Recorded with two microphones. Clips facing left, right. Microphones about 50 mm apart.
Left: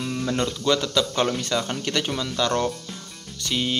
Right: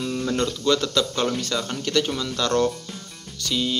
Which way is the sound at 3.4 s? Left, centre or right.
Left.